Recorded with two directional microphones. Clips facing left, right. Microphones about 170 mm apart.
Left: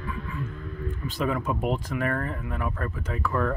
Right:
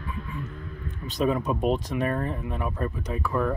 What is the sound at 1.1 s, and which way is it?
Speech, 20° right (ahead or behind).